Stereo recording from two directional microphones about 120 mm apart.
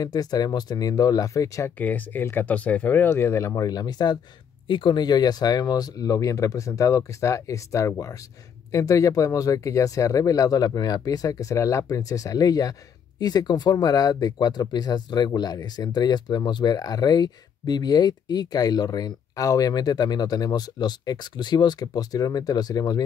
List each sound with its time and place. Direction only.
0.0 s speech: 35° left (ahead or behind)
1.8 s speech: 15° left (ahead or behind); by 23.0 s 35° left (ahead or behind)